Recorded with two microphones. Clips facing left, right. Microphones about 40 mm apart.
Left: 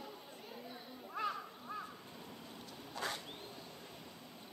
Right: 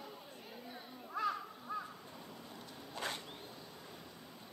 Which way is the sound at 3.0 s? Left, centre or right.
Centre.